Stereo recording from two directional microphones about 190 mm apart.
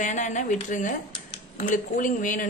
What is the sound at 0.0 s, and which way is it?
A woman's voice, 40° left (ahead or behind).